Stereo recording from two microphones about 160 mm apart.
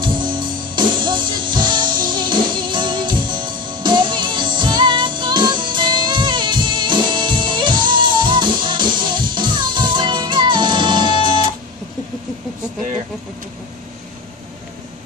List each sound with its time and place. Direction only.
0.0 s music: 30° right (ahead or behind)